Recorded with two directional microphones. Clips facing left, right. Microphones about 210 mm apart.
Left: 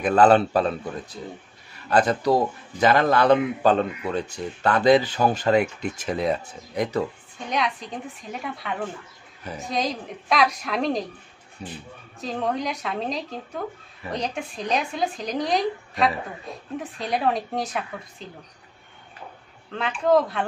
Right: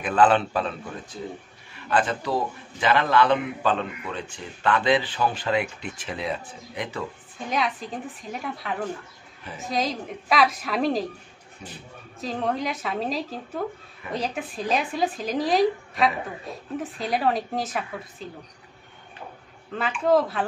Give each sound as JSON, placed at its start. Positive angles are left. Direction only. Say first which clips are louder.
{"t": 0.0, "sound": "a man's voice", "louder": "left 3 dB", "side_deg": 40}
{"t": 1.9, "sound": "a man's voice", "louder": "left 5 dB", "side_deg": 40}
{"t": 7.3, "sound": "speech", "louder": "even", "side_deg": 0}
{"t": 11.6, "sound": "a man's voice", "louder": "left 5 dB", "side_deg": 35}
{"t": 12.2, "sound": "speech", "louder": "even", "side_deg": 0}
{"t": 19.7, "sound": "speech", "louder": "left 1 dB", "side_deg": 0}